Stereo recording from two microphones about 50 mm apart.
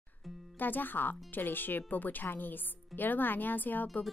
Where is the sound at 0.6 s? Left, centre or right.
Left.